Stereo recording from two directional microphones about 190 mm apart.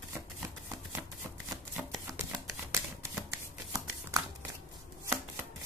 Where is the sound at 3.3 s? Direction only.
15° right (ahead or behind).